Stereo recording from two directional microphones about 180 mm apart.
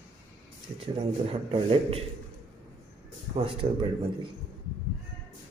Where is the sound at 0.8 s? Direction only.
30° right (ahead or behind).